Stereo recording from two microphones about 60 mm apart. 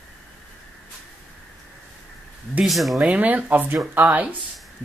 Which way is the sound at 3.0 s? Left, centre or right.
Right.